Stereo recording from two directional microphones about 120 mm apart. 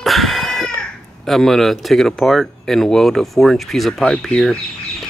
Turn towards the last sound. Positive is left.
turn(degrees=5)  # may be behind; listen again after turning